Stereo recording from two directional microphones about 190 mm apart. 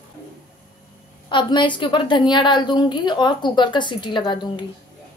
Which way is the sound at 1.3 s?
25° left (ahead or behind).